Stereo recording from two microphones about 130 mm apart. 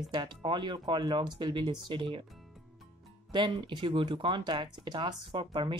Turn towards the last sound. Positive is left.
turn(degrees=-35)  # may be behind; listen again after turning